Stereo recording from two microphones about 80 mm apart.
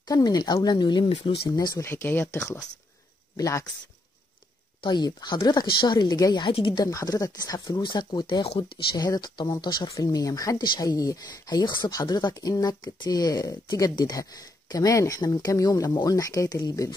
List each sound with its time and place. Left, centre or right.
0.0 s speech: left
0.7 s speech: left
1.8 s speech: left
3.3 s speech: left
4.8 s speech: left
6.4 s speech: left
6.8 s speech: left
7.8 s speech: left
8.9 s speech: left
9.8 s speech: left